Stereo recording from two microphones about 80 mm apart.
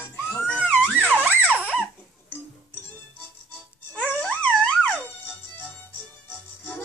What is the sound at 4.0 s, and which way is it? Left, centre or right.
Music, centre.